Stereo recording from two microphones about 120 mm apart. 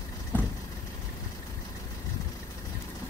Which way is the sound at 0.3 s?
15° left (ahead or behind).